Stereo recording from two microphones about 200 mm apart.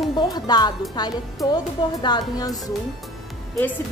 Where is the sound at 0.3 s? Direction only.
20° left (ahead or behind).